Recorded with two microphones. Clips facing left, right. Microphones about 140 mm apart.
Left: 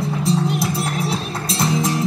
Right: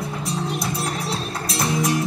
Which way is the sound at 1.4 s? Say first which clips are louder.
Left 2 dB; 25° left (ahead or behind).